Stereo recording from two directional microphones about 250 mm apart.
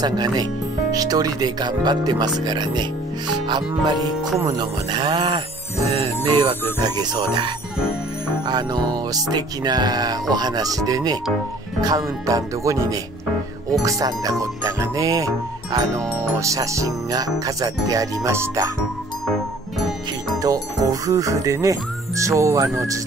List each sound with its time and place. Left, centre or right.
0.0 s speech: centre
5.9 s music: centre
6.8 s speech: centre
8.5 s speech: centre
20.4 s speech: centre